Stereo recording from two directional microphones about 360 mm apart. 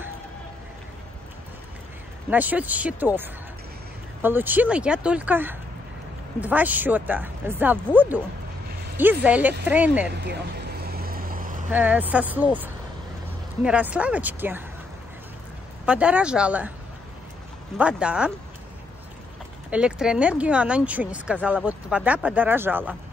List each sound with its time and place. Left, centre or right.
2.2 s speech: centre
4.2 s speech: centre
10.2 s vehicle: right
11.7 s speech: centre
13.7 s speech: centre
15.8 s speech: centre
17.7 s speech: centre
19.7 s speech: centre